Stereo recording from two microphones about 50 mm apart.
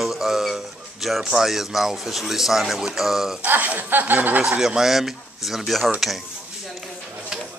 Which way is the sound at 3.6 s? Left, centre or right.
Right.